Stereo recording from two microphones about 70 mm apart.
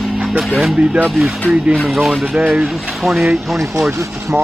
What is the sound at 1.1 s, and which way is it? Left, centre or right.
Speech, centre.